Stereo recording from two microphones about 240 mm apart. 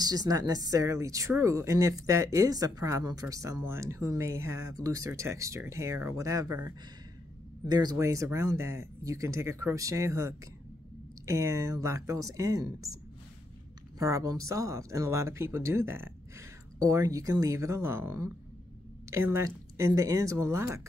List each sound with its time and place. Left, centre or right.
0.0 s speech: centre
13.9 s speech: centre